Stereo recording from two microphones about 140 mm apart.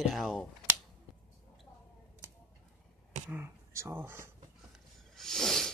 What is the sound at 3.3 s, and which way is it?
Speech, 20° right (ahead or behind).